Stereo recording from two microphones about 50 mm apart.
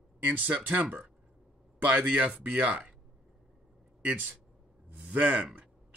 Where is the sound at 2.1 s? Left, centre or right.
Right.